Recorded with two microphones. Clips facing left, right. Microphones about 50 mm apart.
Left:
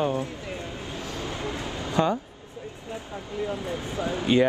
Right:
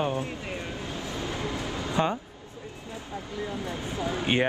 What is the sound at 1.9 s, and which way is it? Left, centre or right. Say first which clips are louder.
Speech: left 3 dB; right.